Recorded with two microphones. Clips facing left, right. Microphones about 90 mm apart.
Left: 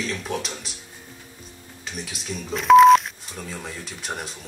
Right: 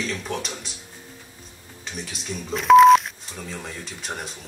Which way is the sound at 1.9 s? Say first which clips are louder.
Even; centre (ahead or behind).